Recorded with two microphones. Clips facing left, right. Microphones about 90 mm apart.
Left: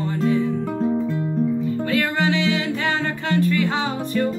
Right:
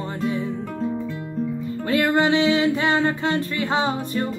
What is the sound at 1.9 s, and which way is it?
Music, 30° right (ahead or behind).